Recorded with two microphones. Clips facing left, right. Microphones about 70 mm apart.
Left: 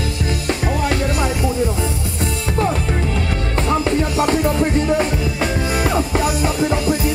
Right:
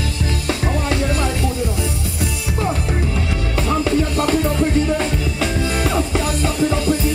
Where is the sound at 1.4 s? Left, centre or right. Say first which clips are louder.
Left 2 dB; left.